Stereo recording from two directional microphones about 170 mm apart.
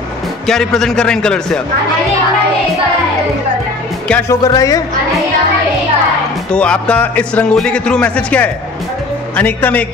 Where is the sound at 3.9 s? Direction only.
10° left (ahead or behind).